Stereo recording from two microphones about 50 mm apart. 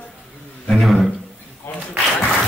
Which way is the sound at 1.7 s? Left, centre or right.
Left.